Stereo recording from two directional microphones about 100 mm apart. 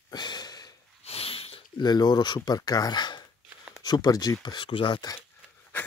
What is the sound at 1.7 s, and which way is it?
Speech, 45° left (ahead or behind).